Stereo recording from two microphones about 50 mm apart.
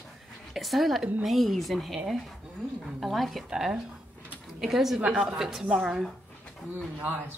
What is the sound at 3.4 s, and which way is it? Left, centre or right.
Speech, centre.